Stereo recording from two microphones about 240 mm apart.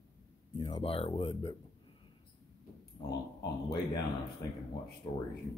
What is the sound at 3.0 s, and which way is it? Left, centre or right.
Speech, left.